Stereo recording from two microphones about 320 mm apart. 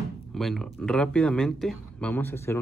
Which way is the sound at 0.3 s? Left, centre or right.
Centre.